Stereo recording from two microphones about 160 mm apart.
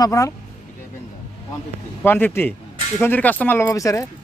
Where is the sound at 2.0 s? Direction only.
10° left (ahead or behind).